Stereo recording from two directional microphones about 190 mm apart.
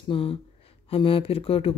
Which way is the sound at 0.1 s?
30° left (ahead or behind).